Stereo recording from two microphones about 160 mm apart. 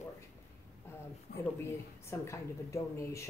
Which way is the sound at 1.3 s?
75° left (ahead or behind).